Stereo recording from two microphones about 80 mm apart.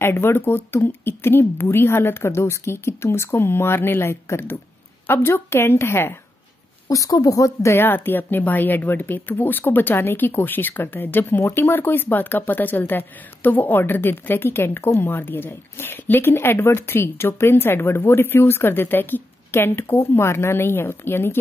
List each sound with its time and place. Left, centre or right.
0.0 s speech: left
6.9 s speech: left
7.8 s speech: left